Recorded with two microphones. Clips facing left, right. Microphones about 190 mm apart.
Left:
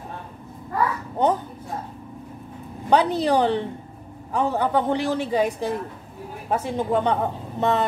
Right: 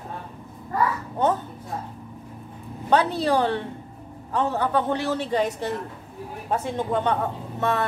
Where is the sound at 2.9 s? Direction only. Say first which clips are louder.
Left 2 dB; 15° left (ahead or behind).